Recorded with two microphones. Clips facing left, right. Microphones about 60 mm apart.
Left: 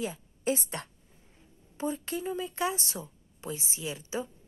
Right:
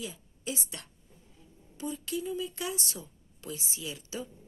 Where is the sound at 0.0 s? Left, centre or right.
Left.